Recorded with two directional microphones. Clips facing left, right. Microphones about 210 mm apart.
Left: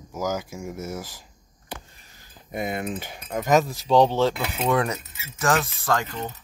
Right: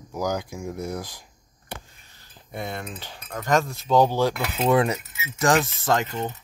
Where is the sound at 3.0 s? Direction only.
15° left (ahead or behind).